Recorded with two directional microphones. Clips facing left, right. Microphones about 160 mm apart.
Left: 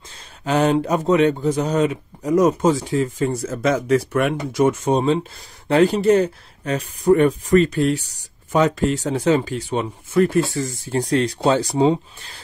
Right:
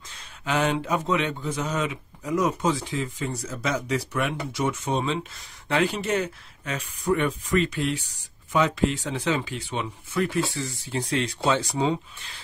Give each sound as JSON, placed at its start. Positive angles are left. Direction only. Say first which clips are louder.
{"t": 0.5, "sound": "speech", "louder": "left 7 dB", "side_deg": 40}